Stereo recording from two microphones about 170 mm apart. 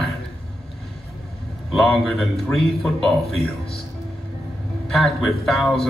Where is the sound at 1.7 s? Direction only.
Centre (ahead or behind).